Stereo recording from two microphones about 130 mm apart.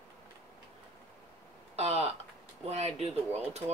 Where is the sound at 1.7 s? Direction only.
55° right (ahead or behind).